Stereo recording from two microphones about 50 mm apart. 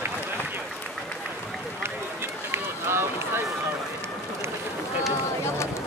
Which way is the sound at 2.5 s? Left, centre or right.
Right.